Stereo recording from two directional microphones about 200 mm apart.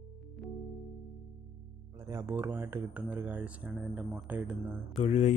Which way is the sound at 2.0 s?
15° right (ahead or behind).